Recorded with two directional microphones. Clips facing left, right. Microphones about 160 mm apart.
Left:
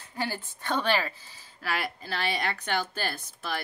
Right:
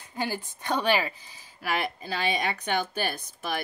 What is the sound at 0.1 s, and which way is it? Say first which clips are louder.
A woman's voice: right 2 dB; 15° right (ahead or behind).